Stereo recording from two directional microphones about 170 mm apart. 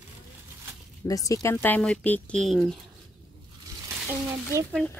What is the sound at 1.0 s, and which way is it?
Speech, 20° left (ahead or behind).